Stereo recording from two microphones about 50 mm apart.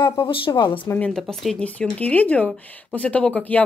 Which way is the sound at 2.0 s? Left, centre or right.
Left.